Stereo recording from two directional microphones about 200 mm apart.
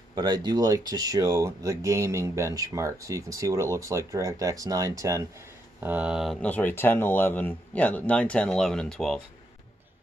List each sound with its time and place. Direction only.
0.1 s speech: 20° right (ahead or behind); by 9.2 s centre (ahead or behind)